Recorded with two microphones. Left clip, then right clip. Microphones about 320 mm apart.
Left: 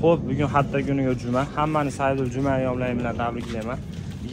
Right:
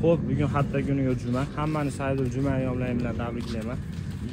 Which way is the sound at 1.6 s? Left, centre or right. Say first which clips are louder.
Left 5 dB; left.